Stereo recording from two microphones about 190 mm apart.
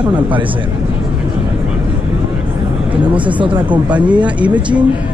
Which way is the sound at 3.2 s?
25° right (ahead or behind).